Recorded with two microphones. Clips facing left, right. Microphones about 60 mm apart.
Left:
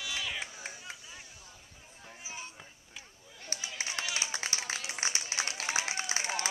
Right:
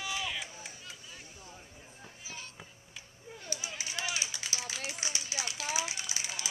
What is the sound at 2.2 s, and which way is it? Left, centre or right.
Music, centre.